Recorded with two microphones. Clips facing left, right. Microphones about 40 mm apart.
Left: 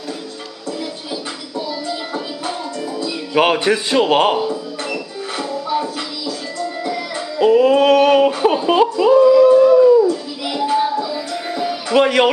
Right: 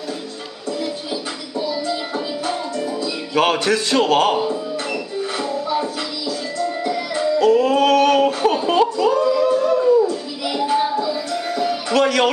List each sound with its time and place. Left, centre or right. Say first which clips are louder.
1.6 s music: right 2 dB; centre
3.3 s a man's voice: left 2 dB; centre
4.4 s music: even; centre
7.3 s a sound: left 4 dB; centre
11.0 s music: right 1 dB; centre
12.0 s speech: left 3 dB; centre